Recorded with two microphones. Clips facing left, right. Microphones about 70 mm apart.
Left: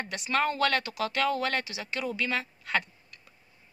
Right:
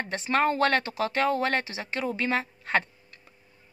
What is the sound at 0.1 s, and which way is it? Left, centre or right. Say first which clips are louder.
Speech: right 4 dB; right.